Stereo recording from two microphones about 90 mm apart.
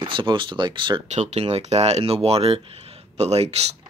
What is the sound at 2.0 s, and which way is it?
Speech, 90° right.